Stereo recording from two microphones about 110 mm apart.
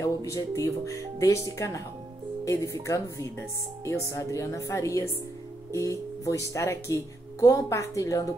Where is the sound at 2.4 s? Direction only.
30° left (ahead or behind).